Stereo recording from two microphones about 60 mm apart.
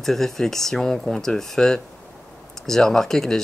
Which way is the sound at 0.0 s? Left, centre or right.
Centre.